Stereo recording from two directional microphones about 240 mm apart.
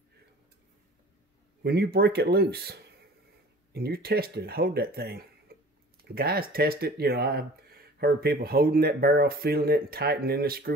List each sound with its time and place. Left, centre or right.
1.6 s speech: right